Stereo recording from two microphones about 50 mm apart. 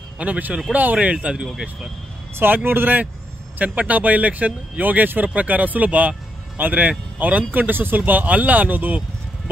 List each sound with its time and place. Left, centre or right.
0.2 s speech: right
1.1 s speech: centre
2.3 s speech: right